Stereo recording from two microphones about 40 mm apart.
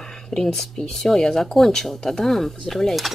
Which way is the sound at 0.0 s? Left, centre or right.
Centre.